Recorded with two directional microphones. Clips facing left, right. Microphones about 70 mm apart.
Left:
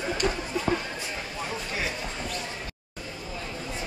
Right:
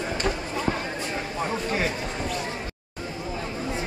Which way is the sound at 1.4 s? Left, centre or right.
Right.